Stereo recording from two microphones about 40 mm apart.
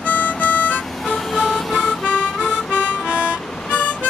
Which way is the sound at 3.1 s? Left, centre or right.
Right.